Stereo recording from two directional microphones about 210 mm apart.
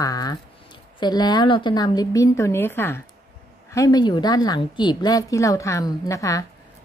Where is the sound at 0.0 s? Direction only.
15° left (ahead or behind).